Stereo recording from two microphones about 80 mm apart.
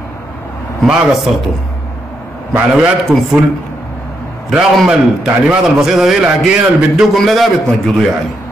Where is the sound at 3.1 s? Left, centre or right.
Centre.